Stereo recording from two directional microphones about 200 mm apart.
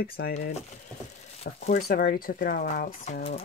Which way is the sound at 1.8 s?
50° left (ahead or behind).